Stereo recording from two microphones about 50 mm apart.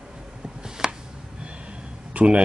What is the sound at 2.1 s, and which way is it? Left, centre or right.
Speech, right.